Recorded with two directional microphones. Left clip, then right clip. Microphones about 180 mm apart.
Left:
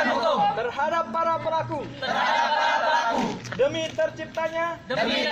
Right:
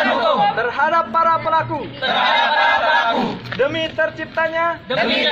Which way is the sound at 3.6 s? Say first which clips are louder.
Right 5 dB; 45° left (ahead or behind).